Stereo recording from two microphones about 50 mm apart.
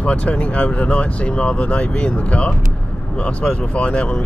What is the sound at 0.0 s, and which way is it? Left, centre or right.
Speech, left.